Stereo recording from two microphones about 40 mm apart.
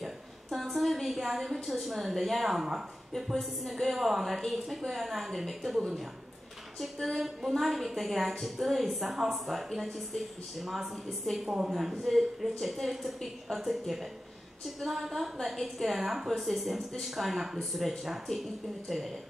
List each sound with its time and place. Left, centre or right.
0.6 s a woman's voice: centre
6.8 s a woman's voice: centre
11.4 s a woman's voice: centre
11.7 s a woman's voice: centre